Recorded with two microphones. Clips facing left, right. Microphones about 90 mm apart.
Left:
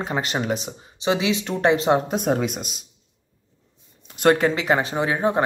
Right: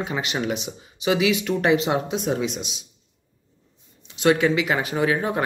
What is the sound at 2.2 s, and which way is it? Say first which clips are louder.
Speech: left 2 dB; 50° left (ahead or behind).